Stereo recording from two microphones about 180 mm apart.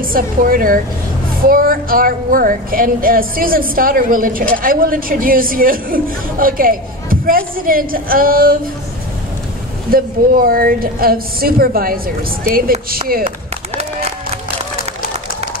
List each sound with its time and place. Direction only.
0.0 s speech: 50° right (ahead or behind)
9.8 s speech: 55° right (ahead or behind)